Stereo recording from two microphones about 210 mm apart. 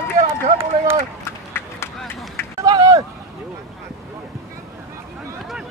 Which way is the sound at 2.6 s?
15° right (ahead or behind).